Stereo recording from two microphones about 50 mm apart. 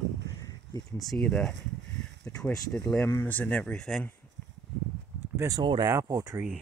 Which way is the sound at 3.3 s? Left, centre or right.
Left.